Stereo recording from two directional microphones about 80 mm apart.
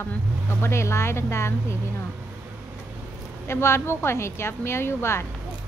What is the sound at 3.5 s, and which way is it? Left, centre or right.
A woman's voice, left.